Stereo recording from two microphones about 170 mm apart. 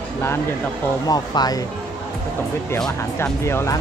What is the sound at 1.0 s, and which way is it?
Speech, 25° left (ahead or behind).